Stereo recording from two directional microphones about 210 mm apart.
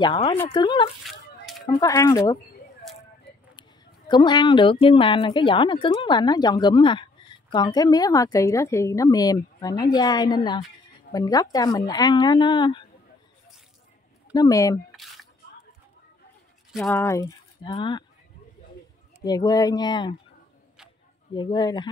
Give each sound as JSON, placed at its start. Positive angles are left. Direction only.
{"t": 0.0, "sound": "a woman's voice", "side_deg": 20}
{"t": 1.0, "sound": "children playing", "side_deg": 0}
{"t": 1.7, "sound": "speech", "side_deg": 15}
{"t": 4.1, "sound": "a woman's voice", "side_deg": 20}
{"t": 14.3, "sound": "speech", "side_deg": 15}
{"t": 14.9, "sound": "single-lens reflex camera", "side_deg": 0}
{"t": 16.9, "sound": "speech", "side_deg": 10}
{"t": 19.2, "sound": "a woman's voice", "side_deg": 20}
{"t": 21.4, "sound": "a woman's voice", "side_deg": 20}